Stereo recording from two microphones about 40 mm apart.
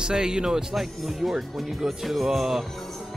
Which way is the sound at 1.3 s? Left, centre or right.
Centre.